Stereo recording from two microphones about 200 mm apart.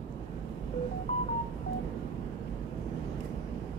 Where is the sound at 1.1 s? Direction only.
30° left (ahead or behind).